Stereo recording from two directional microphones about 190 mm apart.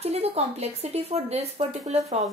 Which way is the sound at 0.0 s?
30° right (ahead or behind).